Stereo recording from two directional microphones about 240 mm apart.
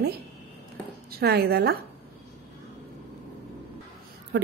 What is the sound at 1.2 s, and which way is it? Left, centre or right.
Speech, right.